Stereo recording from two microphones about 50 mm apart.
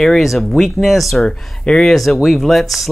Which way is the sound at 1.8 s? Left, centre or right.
Centre.